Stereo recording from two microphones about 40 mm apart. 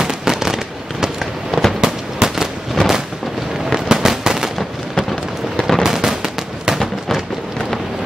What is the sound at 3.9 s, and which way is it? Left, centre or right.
Fireworks, centre.